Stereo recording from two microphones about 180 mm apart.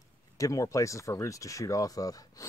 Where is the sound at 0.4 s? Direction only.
20° left (ahead or behind).